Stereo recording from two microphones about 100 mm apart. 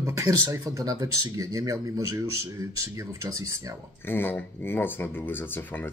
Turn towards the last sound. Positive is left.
turn(degrees=20)  # may be behind; listen again after turning